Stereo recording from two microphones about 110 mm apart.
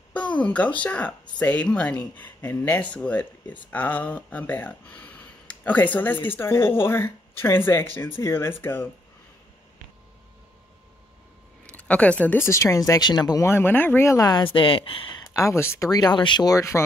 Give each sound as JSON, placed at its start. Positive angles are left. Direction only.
{"t": 0.1, "sound": "speech", "side_deg": 10}
{"t": 11.6, "sound": "speech", "side_deg": 10}
{"t": 13.4, "sound": "speech", "side_deg": 20}
{"t": 14.5, "sound": "speech", "side_deg": 55}
{"t": 15.3, "sound": "speech", "side_deg": 25}
{"t": 15.9, "sound": "speech", "side_deg": 40}